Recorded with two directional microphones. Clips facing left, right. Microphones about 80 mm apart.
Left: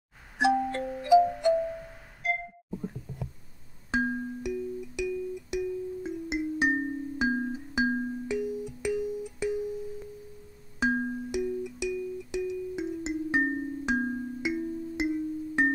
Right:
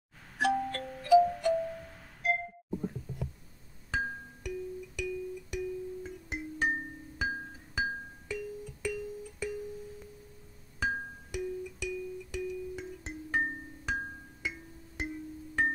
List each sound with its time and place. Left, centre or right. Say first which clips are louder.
0.4 s music: left 5 dB; centre
4.0 s music: left 8 dB; centre
10.8 s music: left 7 dB; centre